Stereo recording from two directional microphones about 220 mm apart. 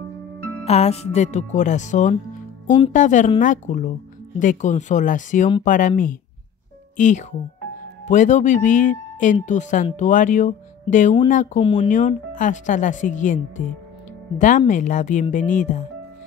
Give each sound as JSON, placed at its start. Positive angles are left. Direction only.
{"t": 0.7, "sound": "speech", "side_deg": 30}
{"t": 11.6, "sound": "speech", "side_deg": 25}
{"t": 11.9, "sound": "speech", "side_deg": 35}
{"t": 14.7, "sound": "speech", "side_deg": 35}